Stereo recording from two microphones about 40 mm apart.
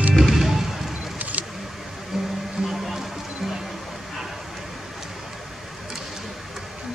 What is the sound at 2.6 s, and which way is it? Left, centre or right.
Music, centre.